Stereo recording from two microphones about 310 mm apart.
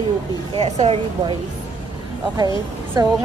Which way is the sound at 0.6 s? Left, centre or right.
Centre.